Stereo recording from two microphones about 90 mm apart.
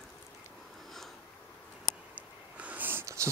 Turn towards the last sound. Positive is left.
turn(degrees=-20)  # may be behind; listen again after turning